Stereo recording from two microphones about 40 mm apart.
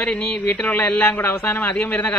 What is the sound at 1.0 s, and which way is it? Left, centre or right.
Speech, left.